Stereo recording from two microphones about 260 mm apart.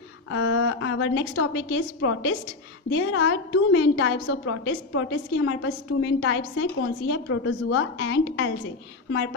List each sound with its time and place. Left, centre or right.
0.3 s a woman's voice: left